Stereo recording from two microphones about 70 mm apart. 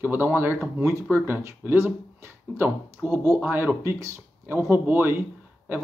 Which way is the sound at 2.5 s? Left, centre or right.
Right.